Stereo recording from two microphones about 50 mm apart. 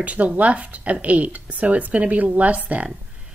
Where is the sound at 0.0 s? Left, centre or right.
Right.